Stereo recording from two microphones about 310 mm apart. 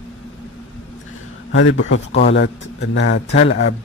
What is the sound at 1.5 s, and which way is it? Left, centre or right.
Speech, left.